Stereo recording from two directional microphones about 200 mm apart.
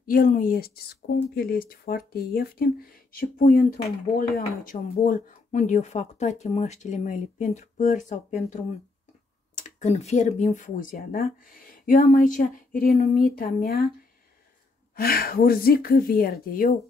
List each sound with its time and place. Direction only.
0.0 s speech: 45° left (ahead or behind)
15.0 s speech: 50° left (ahead or behind)